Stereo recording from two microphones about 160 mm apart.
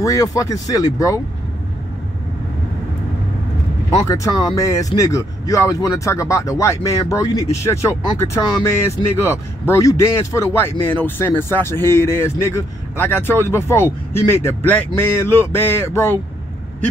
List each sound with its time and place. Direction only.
0.0 s speech: 20° left (ahead or behind)
4.1 s speech: 20° left (ahead or behind)